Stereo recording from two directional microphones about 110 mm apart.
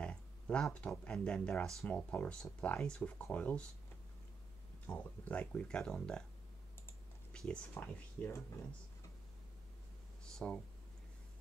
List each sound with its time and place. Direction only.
0.0 s speech: 10° left (ahead or behind)
4.8 s speech: 15° left (ahead or behind)
7.3 s a sound: 5° left (ahead or behind)
7.7 s speech: 20° left (ahead or behind)
10.2 s speech: 5° left (ahead or behind)